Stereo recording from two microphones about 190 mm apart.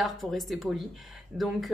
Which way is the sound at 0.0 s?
Centre (ahead or behind).